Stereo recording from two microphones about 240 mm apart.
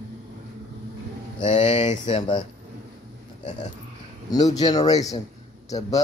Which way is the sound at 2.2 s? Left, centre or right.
Centre.